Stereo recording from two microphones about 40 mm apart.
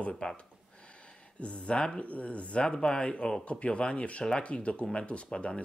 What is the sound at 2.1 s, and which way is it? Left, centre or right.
Speech, left.